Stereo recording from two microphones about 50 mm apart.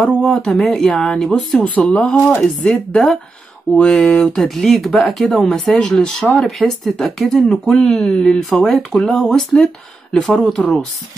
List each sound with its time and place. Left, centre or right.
0.0 s speech: centre
2.4 s speech: centre
5.8 s speech: centre
6.3 s speech: centre